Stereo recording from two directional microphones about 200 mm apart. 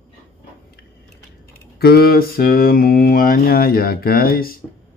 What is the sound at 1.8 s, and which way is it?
Mantra, 50° left (ahead or behind).